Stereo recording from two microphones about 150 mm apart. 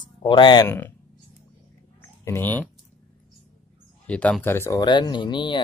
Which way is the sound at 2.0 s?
15° left (ahead or behind).